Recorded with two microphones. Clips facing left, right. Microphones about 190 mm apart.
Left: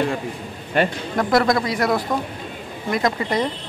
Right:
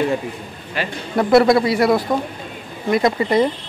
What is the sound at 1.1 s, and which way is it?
Speech, 5° right (ahead or behind).